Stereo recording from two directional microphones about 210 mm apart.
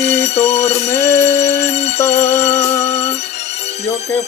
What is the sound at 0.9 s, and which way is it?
Music, 15° left (ahead or behind).